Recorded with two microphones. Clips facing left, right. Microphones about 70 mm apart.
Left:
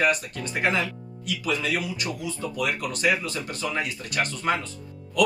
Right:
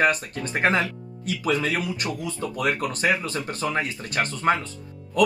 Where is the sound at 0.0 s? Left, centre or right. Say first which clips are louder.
Right 2 dB; right.